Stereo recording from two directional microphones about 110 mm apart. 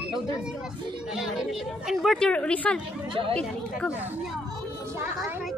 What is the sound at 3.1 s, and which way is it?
Speech, 55° right (ahead or behind).